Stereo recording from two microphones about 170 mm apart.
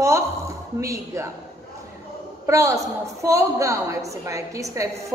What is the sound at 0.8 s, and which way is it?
Speech, 15° right (ahead or behind).